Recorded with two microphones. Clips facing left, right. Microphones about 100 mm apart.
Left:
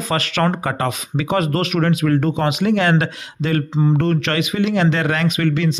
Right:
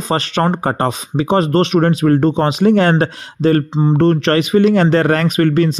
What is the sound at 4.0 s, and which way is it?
A man's voice, 35° right (ahead or behind).